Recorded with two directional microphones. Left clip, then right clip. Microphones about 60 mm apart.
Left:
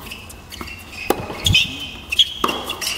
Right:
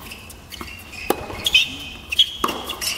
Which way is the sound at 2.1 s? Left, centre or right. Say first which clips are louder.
Left 1 dB; centre.